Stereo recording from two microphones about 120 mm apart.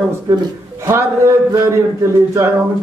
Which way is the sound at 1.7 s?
20° right (ahead or behind).